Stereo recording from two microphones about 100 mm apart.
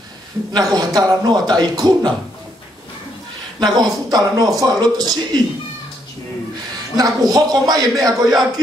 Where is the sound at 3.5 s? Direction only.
45° right (ahead or behind).